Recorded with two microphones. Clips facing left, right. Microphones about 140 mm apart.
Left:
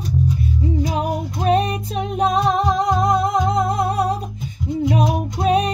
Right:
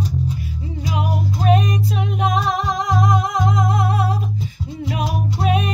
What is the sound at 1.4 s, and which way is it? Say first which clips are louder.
Music: left 1 dB; 35° left (ahead or behind).